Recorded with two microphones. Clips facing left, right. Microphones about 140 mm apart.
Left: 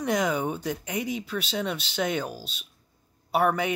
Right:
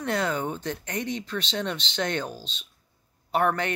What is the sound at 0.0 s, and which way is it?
Speech, 10° left (ahead or behind).